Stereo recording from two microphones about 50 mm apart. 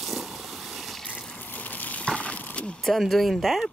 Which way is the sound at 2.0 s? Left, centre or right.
Left.